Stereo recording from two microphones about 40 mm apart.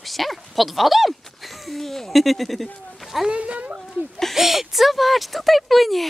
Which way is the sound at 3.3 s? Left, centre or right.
Right.